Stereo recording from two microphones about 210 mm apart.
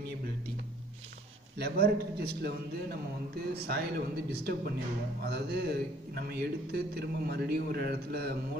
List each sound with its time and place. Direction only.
1.6 s a man's voice: 50° right (ahead or behind)